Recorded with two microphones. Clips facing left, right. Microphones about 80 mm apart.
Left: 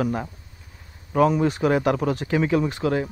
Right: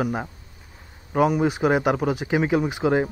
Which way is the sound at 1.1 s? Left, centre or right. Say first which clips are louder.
Left 1 dB; centre.